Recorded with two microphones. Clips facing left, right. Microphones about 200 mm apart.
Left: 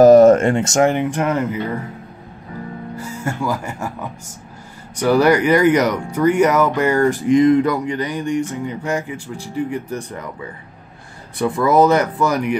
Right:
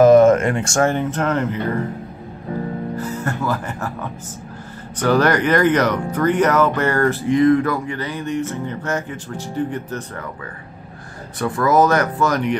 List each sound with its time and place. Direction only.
0.0 s speech: 35° left (ahead or behind); by 1.6 s 10° left (ahead or behind)
3.0 s speech: 10° left (ahead or behind)